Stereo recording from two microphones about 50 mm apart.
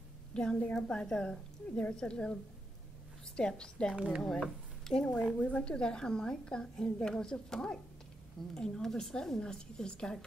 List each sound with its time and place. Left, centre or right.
0.3 s a sound: centre
0.7 s a woman's voice: centre
3.3 s a woman's voice: centre
3.9 s speech: right
4.2 s speech: centre
5.4 s a woman's voice: left